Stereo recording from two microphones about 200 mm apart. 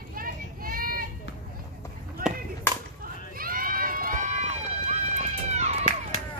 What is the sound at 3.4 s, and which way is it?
Run, 45° right (ahead or behind).